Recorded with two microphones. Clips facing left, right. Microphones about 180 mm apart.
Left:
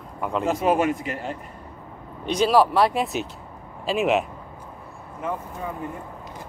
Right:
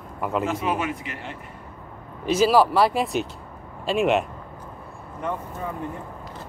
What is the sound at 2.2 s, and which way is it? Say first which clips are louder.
Speech: right 1 dB; 5° right (ahead or behind).